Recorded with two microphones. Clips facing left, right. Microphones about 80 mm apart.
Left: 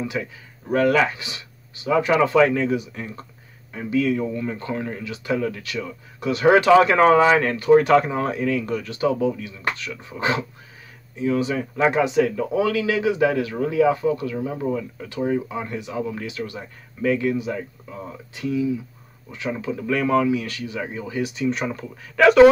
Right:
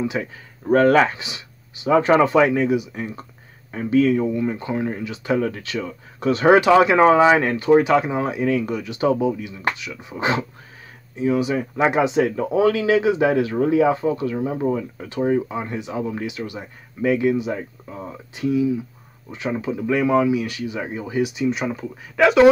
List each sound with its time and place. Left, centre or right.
0.0 s speech: right
0.7 s speech: right
1.1 s speech: right
2.0 s speech: right
2.2 s speech: right
6.7 s speech: centre
7.7 s speech: centre
8.1 s speech: centre